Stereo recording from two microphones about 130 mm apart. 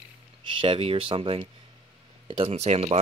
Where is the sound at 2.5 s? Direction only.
55° right (ahead or behind).